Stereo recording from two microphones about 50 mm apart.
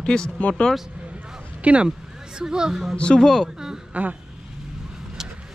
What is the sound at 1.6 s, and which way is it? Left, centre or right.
Speech, right.